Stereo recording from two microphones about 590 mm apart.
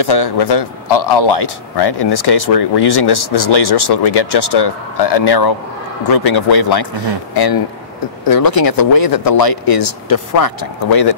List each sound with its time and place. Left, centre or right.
0.0 s speech: left
8.3 s speech: left